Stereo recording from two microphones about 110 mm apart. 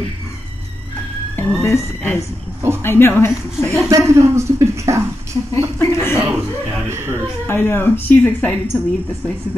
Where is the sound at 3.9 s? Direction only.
25° right (ahead or behind).